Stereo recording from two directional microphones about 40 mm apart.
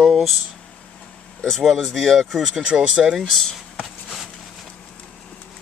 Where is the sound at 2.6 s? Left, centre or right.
Right.